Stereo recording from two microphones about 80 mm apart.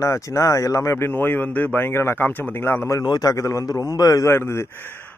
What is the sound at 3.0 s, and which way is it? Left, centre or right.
A man's voice, left.